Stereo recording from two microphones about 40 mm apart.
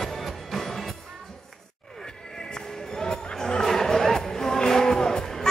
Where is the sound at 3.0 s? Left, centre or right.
Centre.